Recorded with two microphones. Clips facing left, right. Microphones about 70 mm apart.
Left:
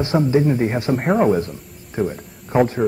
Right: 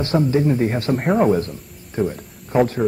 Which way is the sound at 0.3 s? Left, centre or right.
Centre.